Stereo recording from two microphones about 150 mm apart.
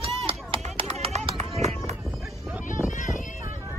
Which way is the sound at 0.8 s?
45° right (ahead or behind).